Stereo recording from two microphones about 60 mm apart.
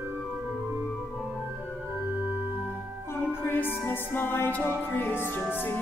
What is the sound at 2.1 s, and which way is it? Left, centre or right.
Organ, right.